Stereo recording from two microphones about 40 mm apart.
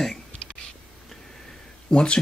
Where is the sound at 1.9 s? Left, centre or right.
Left.